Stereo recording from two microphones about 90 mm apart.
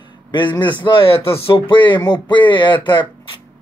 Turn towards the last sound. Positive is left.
turn(degrees=60)  # may be behind; listen again after turning